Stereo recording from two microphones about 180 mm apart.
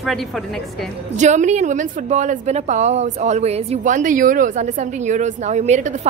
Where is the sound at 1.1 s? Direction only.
40° right (ahead or behind).